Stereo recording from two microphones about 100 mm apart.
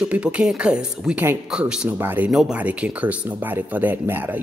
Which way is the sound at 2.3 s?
5° right (ahead or behind).